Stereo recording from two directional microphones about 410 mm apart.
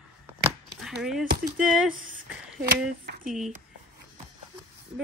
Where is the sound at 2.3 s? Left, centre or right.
Centre.